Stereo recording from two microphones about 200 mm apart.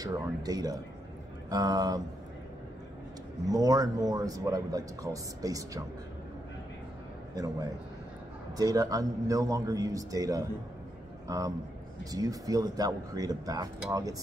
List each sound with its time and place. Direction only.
0.0 s speech: 20° right (ahead or behind)
3.4 s a man's voice: 20° right (ahead or behind)
7.3 s a man's voice: 15° right (ahead or behind)